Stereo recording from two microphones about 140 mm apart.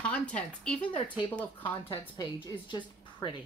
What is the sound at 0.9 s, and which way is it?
A woman's voice, 35° left (ahead or behind).